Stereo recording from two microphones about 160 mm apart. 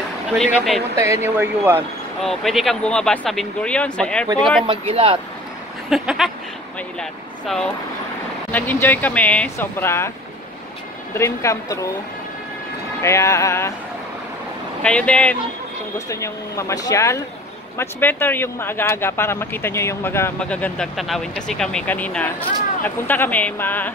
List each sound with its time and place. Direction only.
0.9 s speech: 20° right (ahead or behind)
2.2 s speech: centre (ahead or behind)
4.6 s speech: 35° right (ahead or behind)
5.9 s speech: centre (ahead or behind); by 10.1 s 15° left (ahead or behind)
11.1 s speech: 15° left (ahead or behind)
13.0 s speech: 20° left (ahead or behind)
14.8 s speech: 5° left (ahead or behind)
16.1 s speech: 20° left (ahead or behind)